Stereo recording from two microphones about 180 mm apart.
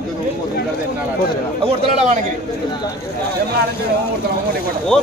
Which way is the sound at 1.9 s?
40° right (ahead or behind).